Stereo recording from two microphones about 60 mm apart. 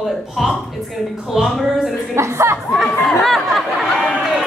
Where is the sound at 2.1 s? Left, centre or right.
Right.